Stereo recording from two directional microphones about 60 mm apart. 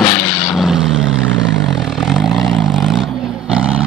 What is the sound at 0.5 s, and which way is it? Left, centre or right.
Vehicle, centre.